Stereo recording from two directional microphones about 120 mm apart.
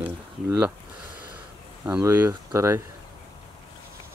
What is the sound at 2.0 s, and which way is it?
Speech, 20° right (ahead or behind).